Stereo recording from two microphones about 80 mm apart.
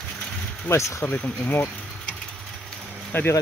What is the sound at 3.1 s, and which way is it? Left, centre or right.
Speech, left.